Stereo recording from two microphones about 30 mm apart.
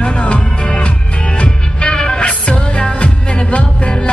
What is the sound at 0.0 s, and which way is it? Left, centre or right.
Music, left.